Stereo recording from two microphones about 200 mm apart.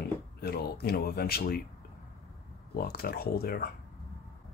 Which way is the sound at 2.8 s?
50° left (ahead or behind).